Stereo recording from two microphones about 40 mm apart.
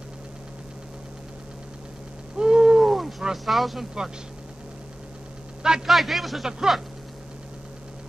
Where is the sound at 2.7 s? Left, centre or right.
Centre.